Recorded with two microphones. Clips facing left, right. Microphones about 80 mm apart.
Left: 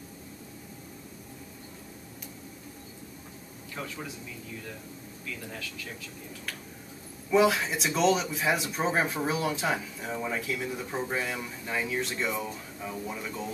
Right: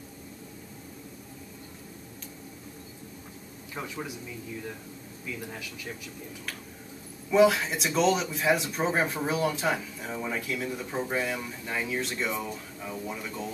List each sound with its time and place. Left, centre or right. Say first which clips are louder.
3.7 s speech: right 2 dB; centre
5.2 s speech: right 2 dB; centre
7.2 s speech: right 2 dB; centre